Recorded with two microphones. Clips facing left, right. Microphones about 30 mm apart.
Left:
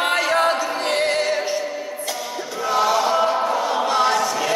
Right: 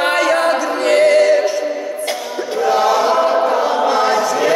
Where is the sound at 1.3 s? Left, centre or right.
Centre.